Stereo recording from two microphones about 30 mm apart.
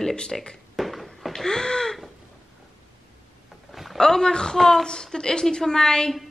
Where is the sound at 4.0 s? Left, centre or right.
Centre.